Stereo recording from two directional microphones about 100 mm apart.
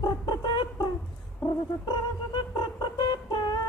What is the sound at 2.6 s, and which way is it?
Music, 45° left (ahead or behind).